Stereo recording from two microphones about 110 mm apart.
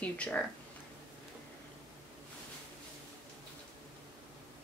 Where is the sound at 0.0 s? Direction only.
10° left (ahead or behind).